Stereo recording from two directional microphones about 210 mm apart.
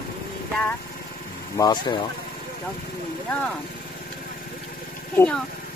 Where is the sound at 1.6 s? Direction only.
20° left (ahead or behind).